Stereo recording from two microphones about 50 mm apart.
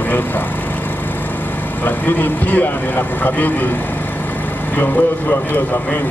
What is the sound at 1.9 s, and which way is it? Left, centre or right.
Speech, left.